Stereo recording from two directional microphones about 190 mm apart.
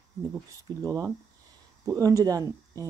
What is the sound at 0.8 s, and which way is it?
Speech, 15° right (ahead or behind).